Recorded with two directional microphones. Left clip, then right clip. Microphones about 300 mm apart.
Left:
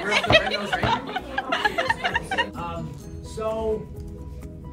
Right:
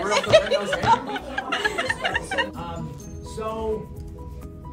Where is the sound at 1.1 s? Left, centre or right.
Centre.